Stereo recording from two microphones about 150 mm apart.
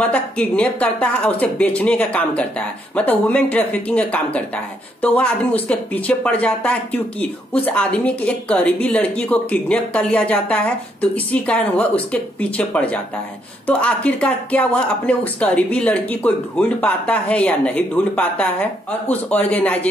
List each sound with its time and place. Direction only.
0.0 s speech: 10° left (ahead or behind)